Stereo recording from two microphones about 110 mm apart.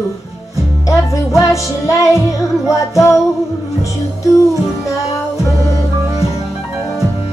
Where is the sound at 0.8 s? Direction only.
30° left (ahead or behind).